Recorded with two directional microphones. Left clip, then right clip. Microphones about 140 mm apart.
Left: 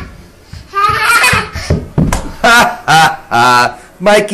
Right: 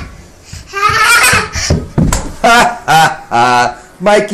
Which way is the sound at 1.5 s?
20° right (ahead or behind).